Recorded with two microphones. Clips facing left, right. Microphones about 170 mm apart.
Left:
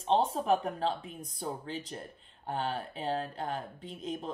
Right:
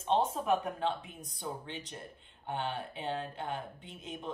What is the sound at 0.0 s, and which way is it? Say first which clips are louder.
Speech: left 2 dB; 35° left (ahead or behind).